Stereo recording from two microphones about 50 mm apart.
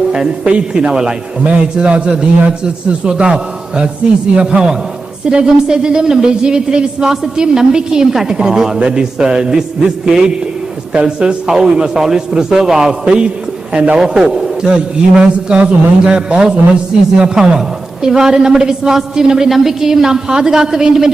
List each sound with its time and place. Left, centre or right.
0.1 s a woman's voice: centre